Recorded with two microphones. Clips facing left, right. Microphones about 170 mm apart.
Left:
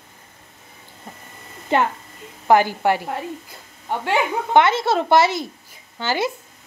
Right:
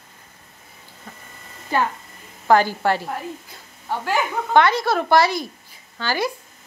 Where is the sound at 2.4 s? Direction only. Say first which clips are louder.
Left 1 dB; 15° left (ahead or behind).